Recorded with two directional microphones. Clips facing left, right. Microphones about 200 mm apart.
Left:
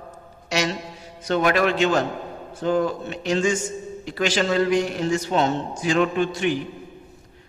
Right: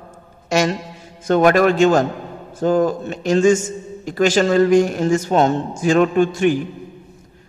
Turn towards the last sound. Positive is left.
turn(degrees=-45)  # may be behind; listen again after turning